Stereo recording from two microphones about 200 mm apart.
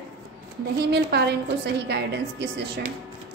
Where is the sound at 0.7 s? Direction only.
55° right (ahead or behind).